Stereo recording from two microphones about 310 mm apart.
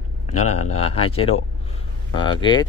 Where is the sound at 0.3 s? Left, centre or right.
Left.